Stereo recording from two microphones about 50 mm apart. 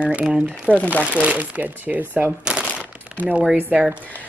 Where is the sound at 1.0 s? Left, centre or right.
Right.